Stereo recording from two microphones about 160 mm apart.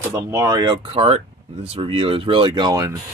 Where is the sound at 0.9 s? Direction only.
35° right (ahead or behind).